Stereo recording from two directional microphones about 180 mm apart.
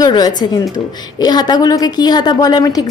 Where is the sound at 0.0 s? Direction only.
20° left (ahead or behind).